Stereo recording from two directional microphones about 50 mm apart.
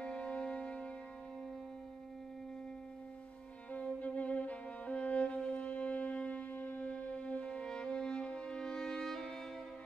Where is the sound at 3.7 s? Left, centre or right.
Left; by 9.3 s centre.